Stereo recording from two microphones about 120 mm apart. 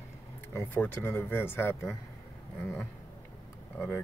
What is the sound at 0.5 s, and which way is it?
Speech, 20° left (ahead or behind).